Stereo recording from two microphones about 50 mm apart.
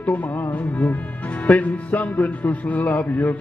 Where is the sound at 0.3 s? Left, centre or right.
Left.